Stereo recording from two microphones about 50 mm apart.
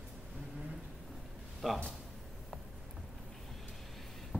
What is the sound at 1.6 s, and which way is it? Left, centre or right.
Speech, centre.